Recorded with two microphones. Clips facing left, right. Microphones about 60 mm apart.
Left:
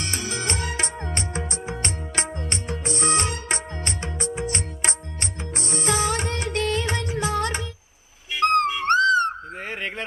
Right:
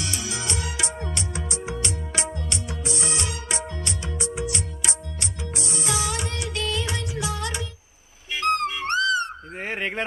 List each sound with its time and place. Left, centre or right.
0.0 s music: left
9.6 s fowl: centre